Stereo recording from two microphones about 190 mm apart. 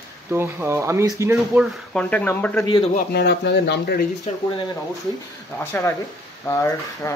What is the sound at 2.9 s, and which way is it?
Speech, 60° left (ahead or behind).